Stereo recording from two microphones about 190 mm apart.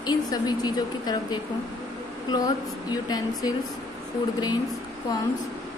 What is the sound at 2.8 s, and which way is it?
Speech, 20° left (ahead or behind).